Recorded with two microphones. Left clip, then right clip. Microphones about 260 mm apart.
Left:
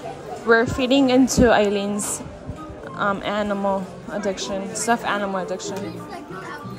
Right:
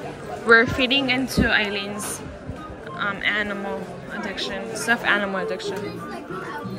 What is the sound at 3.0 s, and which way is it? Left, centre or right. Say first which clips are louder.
Speech: left 1 dB; centre.